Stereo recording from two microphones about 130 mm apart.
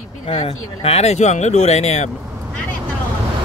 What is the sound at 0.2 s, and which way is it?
Speech, 50° left (ahead or behind).